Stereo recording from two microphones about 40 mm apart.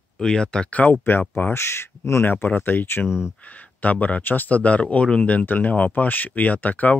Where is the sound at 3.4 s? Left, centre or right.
Left.